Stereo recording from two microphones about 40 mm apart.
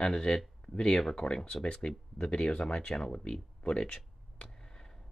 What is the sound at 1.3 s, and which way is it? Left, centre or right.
Speech, left.